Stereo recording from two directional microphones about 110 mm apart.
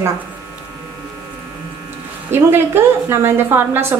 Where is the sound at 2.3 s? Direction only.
20° right (ahead or behind).